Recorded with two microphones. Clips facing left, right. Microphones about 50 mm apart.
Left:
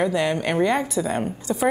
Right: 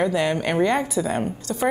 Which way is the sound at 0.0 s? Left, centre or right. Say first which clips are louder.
Even; centre.